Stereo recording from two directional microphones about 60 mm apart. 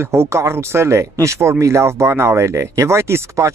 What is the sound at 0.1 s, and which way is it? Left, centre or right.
Speech, right.